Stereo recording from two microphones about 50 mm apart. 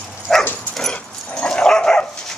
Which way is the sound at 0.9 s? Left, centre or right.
Centre.